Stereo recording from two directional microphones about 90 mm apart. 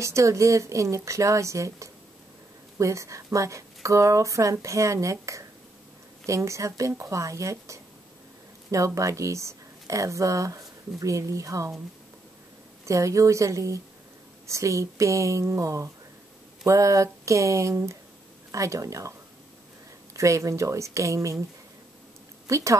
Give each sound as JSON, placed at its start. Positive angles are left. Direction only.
{"t": 0.0, "sound": "a woman's voice", "side_deg": -35}
{"t": 12.8, "sound": "speech", "side_deg": -35}
{"t": 20.2, "sound": "speech", "side_deg": -35}
{"t": 22.5, "sound": "speech", "side_deg": -35}